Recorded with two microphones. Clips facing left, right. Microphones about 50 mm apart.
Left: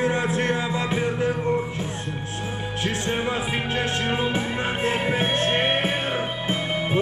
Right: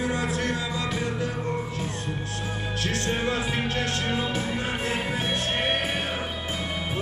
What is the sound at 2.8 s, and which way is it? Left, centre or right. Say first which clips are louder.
Music: left 2 dB; centre.